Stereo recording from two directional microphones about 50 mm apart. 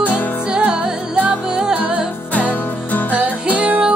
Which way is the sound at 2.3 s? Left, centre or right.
Left.